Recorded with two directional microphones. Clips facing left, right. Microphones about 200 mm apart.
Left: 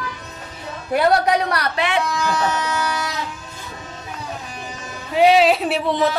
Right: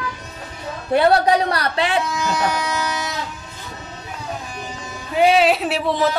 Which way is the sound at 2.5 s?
10° right (ahead or behind).